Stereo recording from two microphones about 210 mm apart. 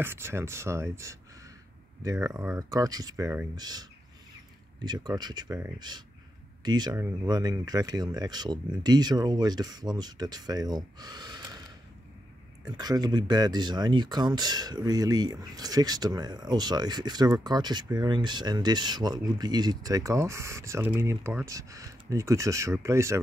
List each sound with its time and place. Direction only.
0.0 s speech: 10° right (ahead or behind)
12.6 s speech: 20° right (ahead or behind)